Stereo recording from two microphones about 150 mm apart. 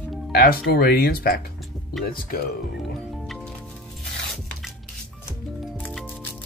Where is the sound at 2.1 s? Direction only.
75° left (ahead or behind).